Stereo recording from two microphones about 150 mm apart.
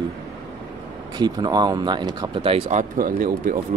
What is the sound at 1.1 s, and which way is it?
Speech, 30° right (ahead or behind).